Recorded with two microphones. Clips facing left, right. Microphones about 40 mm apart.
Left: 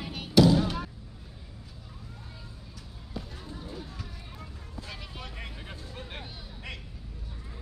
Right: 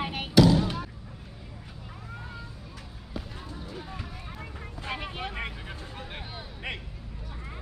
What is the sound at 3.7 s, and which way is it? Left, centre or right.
Vehicle, right.